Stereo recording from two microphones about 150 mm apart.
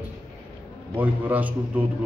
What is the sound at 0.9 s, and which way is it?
Speech, 10° right (ahead or behind).